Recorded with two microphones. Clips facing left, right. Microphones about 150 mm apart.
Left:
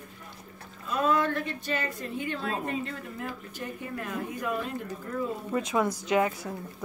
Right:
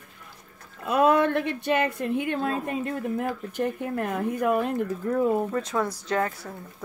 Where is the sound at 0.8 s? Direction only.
65° right (ahead or behind).